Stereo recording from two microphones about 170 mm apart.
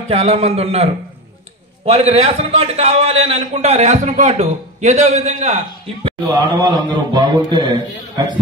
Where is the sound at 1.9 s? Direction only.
40° right (ahead or behind).